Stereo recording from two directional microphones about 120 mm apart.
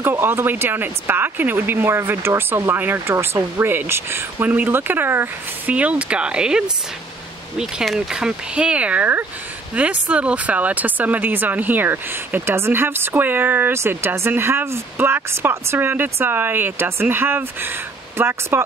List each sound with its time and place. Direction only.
0.0 s speech: 20° right (ahead or behind)